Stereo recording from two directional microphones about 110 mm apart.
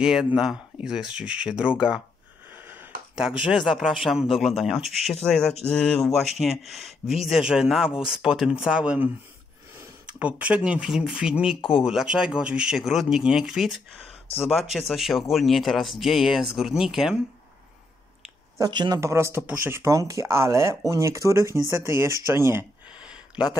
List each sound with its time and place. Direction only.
0.0 s speech: 5° right (ahead or behind)
2.5 s a sound: 20° right (ahead or behind)
3.2 s speech: 5° right (ahead or behind)
18.6 s speech: 40° right (ahead or behind)
18.9 s speech: 25° right (ahead or behind)
22.9 s a sound: 10° right (ahead or behind)